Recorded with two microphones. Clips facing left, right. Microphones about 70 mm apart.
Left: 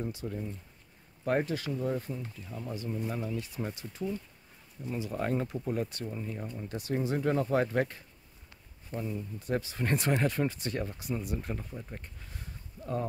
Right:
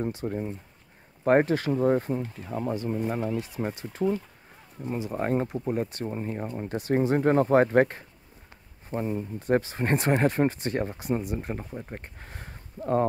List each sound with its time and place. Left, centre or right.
0.0 s speech: right
2.9 s speech: right
3.3 s speech: right
4.8 s speech: right
6.0 s speech: right
11.9 s a sound: right